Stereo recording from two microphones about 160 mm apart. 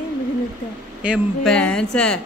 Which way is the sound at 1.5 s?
5° left (ahead or behind).